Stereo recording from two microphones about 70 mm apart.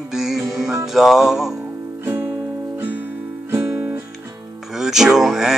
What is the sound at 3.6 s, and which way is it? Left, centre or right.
Music, centre.